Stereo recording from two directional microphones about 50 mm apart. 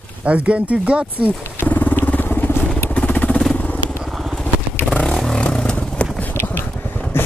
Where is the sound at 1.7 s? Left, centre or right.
Left.